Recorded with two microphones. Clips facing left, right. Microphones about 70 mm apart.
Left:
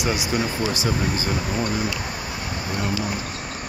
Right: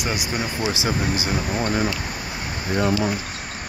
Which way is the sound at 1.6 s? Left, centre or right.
Right.